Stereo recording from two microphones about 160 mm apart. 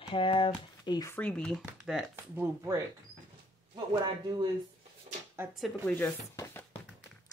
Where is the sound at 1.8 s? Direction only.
5° right (ahead or behind).